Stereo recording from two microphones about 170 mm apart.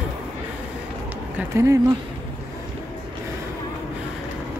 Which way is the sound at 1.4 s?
15° right (ahead or behind).